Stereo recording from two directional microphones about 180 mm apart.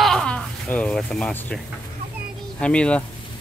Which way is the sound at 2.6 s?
5° left (ahead or behind).